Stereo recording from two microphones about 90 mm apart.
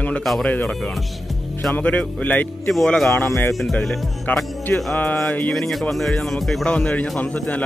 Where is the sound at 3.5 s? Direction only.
Centre (ahead or behind).